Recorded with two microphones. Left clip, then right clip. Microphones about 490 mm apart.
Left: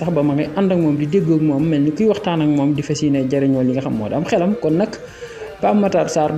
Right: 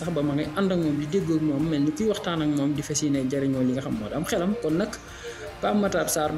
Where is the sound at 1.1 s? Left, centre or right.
Right.